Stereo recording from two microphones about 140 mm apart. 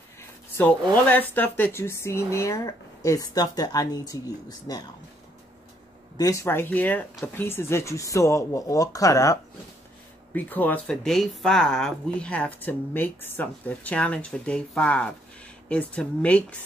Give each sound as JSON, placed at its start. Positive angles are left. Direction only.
{"t": 0.6, "sound": "speech", "side_deg": 10}
{"t": 6.1, "sound": "speech", "side_deg": 25}
{"t": 10.3, "sound": "speech", "side_deg": 10}